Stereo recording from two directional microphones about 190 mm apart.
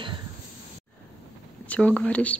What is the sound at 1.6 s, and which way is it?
Speech, 5° left (ahead or behind).